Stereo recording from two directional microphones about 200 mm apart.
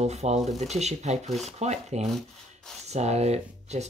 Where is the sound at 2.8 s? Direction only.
35° right (ahead or behind).